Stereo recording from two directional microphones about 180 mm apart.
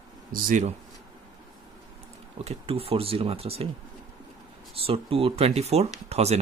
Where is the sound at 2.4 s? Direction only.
35° right (ahead or behind).